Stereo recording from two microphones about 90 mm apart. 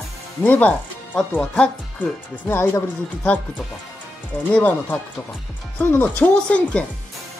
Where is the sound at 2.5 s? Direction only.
30° left (ahead or behind).